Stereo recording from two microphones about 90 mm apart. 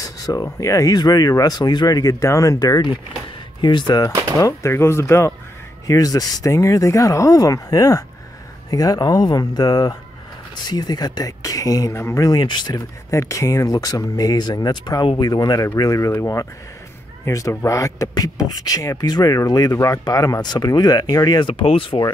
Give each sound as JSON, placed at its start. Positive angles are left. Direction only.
{"t": 0.0, "sound": "speech", "side_deg": 45}
{"t": 3.6, "sound": "speech", "side_deg": 50}
{"t": 4.4, "sound": "speech", "side_deg": 35}
{"t": 5.9, "sound": "speech", "side_deg": 40}
{"t": 11.9, "sound": "speech", "side_deg": 30}
{"t": 12.3, "sound": "speech", "side_deg": 55}
{"t": 13.1, "sound": "speech", "side_deg": 35}
{"t": 17.2, "sound": "speech", "side_deg": 35}